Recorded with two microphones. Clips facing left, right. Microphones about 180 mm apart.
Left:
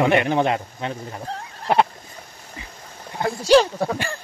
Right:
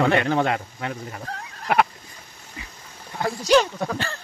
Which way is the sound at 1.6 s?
30° left (ahead or behind).